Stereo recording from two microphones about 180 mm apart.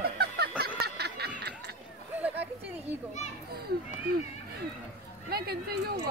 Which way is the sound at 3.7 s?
60° right (ahead or behind).